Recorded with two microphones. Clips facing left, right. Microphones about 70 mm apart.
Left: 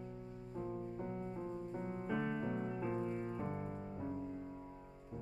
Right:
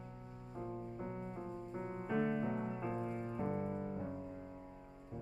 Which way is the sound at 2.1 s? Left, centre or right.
Centre.